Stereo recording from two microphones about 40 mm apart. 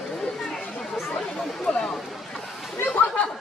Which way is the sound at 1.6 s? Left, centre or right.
Centre.